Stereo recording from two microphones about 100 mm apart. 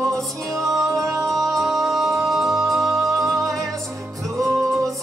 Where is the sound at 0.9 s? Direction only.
35° right (ahead or behind).